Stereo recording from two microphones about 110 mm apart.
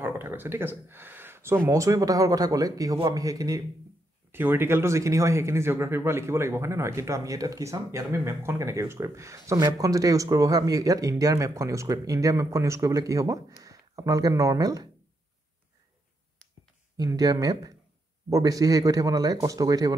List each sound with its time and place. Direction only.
0.0 s a man's voice: 20° right (ahead or behind)
4.3 s speech: 20° right (ahead or behind); by 14.9 s 35° right (ahead or behind)
16.9 s a man's voice: 35° right (ahead or behind)